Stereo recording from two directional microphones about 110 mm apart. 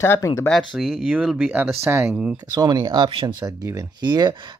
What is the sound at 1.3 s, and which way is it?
Speech, 15° right (ahead or behind).